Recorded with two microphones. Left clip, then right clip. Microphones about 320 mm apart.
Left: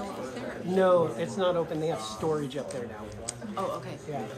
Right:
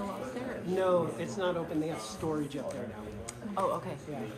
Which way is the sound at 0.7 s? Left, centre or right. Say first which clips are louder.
Left 6 dB; left.